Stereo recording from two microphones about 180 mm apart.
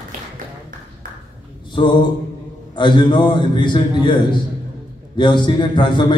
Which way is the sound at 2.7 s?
25° left (ahead or behind).